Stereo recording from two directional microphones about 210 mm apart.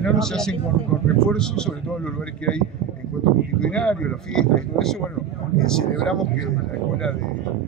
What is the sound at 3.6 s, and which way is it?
A man's voice, 5° left (ahead or behind).